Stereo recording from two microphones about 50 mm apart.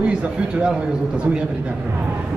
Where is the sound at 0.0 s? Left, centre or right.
Right.